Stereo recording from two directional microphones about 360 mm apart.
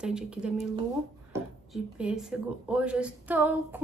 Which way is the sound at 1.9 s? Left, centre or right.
Centre.